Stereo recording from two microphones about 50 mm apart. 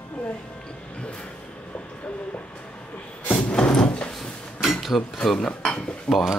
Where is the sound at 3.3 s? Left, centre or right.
Centre.